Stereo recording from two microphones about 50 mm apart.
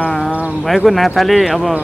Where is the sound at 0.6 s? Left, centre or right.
Centre.